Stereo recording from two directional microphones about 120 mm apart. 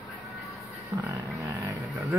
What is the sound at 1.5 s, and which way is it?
Vehicle, 25° right (ahead or behind).